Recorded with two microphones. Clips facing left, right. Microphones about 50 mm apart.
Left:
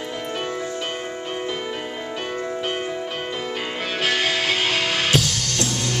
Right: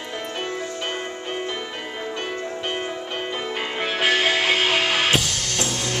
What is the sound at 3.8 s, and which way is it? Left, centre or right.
Music, centre.